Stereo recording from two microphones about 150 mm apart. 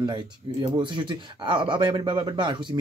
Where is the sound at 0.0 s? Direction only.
30° right (ahead or behind).